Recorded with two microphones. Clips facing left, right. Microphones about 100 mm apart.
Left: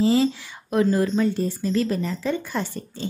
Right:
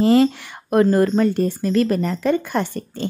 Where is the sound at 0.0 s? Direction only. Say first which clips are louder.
Right 5 dB; 60° right (ahead or behind).